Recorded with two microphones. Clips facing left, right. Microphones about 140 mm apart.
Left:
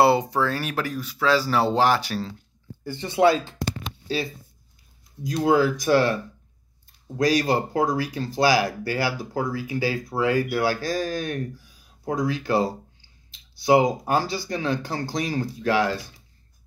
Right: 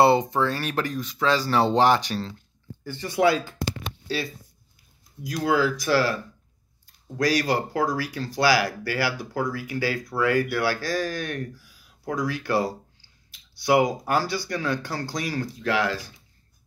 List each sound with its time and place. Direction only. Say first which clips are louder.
0.0 s speech: even; 5° left (ahead or behind); by 3.5 s 25° left (ahead or behind)
5.2 s speech: left 3 dB; 25° left (ahead or behind)
7.2 s speech: left 2 dB; 20° left (ahead or behind)